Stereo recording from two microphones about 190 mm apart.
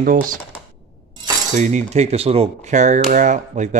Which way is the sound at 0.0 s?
45° right (ahead or behind).